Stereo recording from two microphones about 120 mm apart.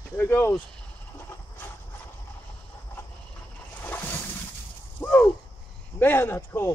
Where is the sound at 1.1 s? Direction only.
20° left (ahead or behind).